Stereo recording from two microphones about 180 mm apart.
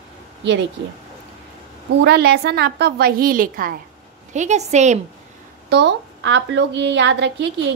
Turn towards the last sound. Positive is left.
turn(degrees=-75)  # may be behind; listen again after turning